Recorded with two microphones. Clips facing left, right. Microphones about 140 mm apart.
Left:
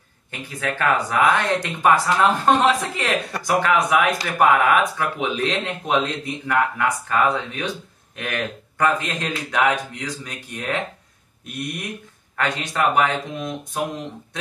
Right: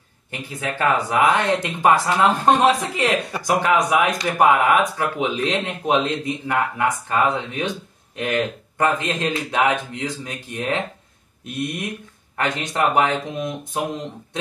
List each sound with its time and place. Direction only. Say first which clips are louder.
0.3 s speech: left 1 dB; 15° right (ahead or behind)